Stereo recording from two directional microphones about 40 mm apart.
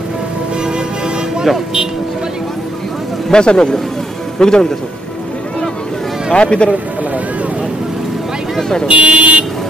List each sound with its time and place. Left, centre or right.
3.3 s speech: left
6.3 s speech: left
8.5 s speech: centre
8.8 s speech: right